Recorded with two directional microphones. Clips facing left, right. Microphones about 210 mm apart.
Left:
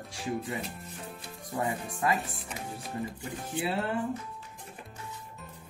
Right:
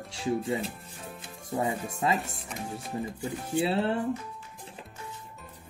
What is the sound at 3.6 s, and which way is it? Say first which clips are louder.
Speech: right 4 dB; 25° right (ahead or behind).